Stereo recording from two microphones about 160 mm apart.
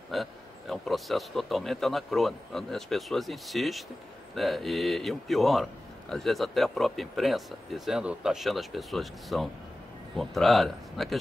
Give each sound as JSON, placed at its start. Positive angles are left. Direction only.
{"t": 0.1, "sound": "a man's voice", "side_deg": 0}